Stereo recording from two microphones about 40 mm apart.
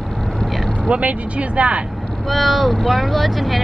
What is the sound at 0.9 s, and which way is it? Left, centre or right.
Speech, right.